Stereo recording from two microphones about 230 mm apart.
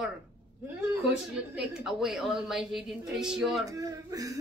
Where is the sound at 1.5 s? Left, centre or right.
Centre.